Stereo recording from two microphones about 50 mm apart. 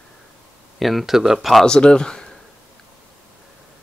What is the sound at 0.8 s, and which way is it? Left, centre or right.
Speech, centre.